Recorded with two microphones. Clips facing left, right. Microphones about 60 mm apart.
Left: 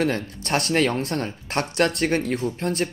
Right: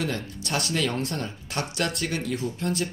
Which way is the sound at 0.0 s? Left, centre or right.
Left.